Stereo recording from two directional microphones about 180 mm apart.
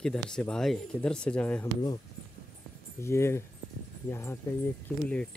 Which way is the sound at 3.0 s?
15° left (ahead or behind).